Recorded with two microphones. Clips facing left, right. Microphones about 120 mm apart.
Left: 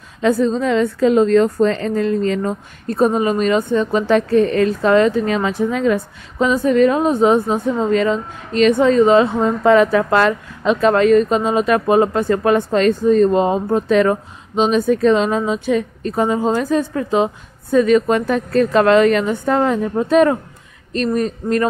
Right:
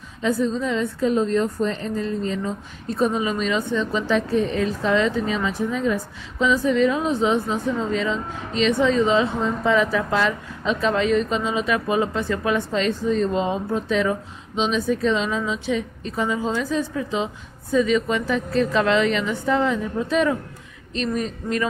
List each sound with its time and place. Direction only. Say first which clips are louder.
0.2 s a woman's voice: left 6 dB; 75° left (ahead or behind)
6.4 s speech: left 5 dB; 50° left (ahead or behind)